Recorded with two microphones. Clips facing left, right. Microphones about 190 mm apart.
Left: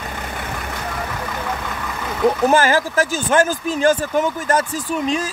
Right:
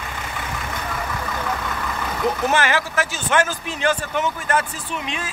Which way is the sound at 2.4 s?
40° left (ahead or behind).